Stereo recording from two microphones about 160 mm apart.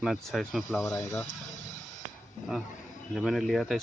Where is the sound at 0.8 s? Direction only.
20° left (ahead or behind).